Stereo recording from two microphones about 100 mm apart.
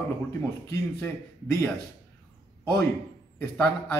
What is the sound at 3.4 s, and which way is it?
Speech, 25° left (ahead or behind).